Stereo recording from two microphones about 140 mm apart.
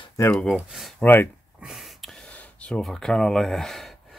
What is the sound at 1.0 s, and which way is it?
Speech, 15° left (ahead or behind).